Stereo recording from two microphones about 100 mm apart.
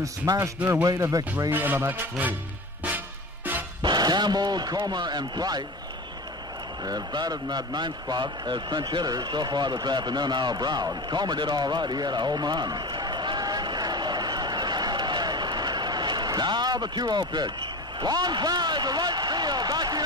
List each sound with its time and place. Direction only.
0.2 s speech: 35° right (ahead or behind)
1.5 s speech: 20° right (ahead or behind)
3.8 s a man's voice: 45° right (ahead or behind)
6.8 s a man's voice: 45° right (ahead or behind)
18.0 s a sound: 45° right (ahead or behind)